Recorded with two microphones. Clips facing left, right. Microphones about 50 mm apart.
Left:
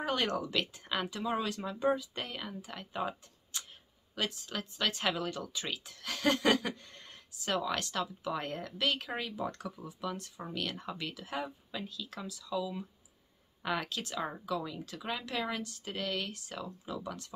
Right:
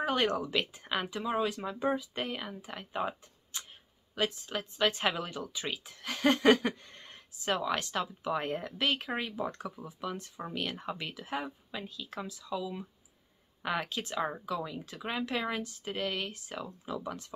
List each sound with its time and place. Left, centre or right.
0.0 s speech: centre